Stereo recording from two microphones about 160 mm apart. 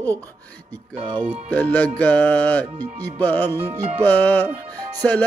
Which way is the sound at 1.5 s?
10° left (ahead or behind).